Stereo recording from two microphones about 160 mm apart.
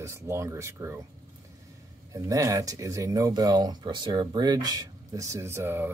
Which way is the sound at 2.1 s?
20° right (ahead or behind).